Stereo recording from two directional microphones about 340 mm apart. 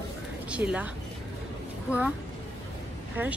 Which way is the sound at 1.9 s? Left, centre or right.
Centre.